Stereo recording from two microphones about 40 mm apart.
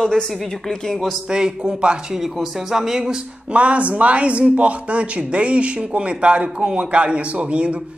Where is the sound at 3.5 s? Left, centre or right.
Right.